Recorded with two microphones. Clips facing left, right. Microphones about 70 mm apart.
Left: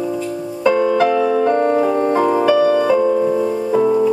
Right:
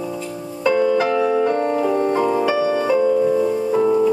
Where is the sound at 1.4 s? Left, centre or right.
Centre.